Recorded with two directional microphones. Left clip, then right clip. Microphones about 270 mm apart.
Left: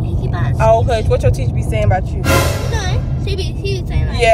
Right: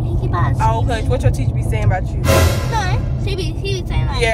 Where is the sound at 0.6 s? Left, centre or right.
Centre.